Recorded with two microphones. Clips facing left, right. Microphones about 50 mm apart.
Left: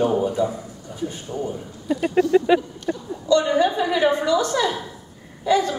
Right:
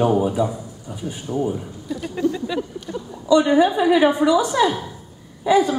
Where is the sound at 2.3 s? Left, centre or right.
Left.